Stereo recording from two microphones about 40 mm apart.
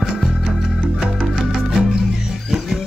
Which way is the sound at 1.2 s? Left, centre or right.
Centre.